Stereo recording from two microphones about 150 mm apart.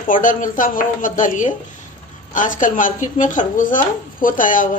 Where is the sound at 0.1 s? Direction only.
60° left (ahead or behind).